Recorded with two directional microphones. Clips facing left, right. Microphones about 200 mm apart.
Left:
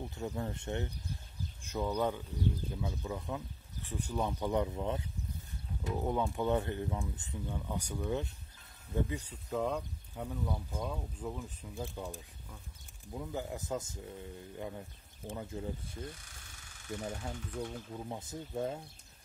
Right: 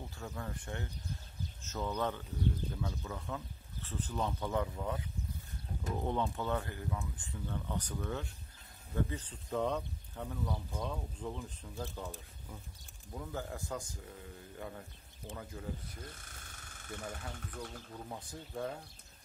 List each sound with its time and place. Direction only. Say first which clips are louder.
0.0 s speech: left 6 dB; 20° left (ahead or behind)
5.9 s speech: left 2 dB; 5° left (ahead or behind); by 16.1 s 25° left (ahead or behind)
16.1 s a sound: left 2 dB; 50° right (ahead or behind)
16.9 s speech: left 4 dB; 25° left (ahead or behind)